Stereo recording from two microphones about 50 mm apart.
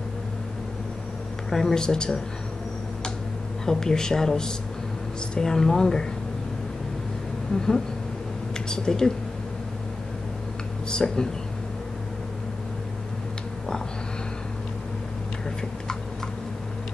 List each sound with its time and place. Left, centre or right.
1.5 s speech: centre
3.6 s speech: centre
7.5 s speech: centre
10.9 s speech: centre